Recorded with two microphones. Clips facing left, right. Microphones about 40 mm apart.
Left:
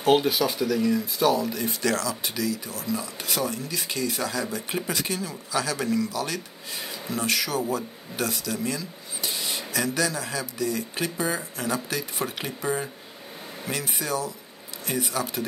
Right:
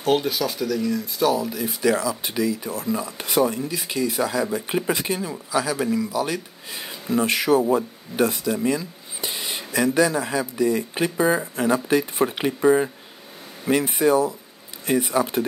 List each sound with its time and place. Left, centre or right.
0.0 s speech: centre
1.9 s speech: centre
5.5 s a man's voice: centre